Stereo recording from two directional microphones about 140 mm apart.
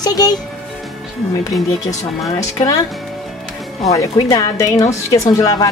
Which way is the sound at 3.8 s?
25° left (ahead or behind).